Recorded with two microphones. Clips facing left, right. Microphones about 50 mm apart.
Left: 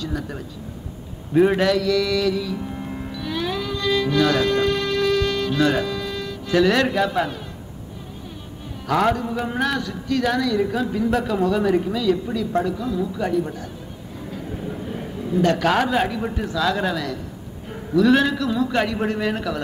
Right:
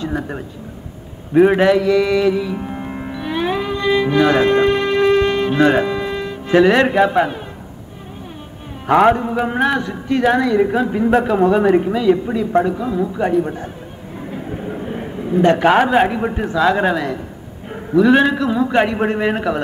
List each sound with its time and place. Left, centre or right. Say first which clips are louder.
0.0 s speech: right 5 dB; right
1.3 s mantra: right 5 dB; centre
8.8 s a man's voice: right 7 dB; right